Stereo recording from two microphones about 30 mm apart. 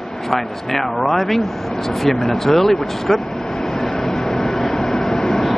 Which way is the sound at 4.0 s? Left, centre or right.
Centre.